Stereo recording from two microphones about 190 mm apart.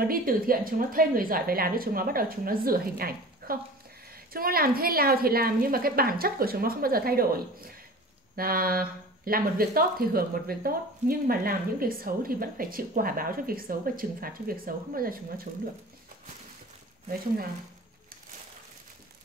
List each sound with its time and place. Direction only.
0.0 s speech: 50° right (ahead or behind)